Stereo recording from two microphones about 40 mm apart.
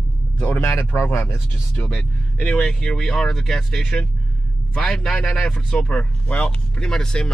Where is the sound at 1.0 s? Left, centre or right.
Left.